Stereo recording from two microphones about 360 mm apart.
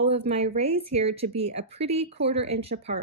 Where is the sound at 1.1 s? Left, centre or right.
Right.